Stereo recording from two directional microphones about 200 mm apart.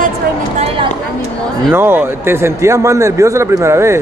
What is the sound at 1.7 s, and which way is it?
A man's voice, 10° right (ahead or behind).